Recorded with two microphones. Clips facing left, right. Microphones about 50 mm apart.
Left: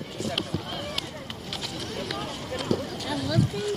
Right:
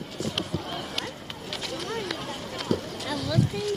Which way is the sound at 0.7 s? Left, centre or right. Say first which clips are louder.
Even; centre.